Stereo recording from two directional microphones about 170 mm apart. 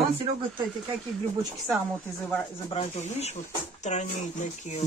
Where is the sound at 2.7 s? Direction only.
40° left (ahead or behind).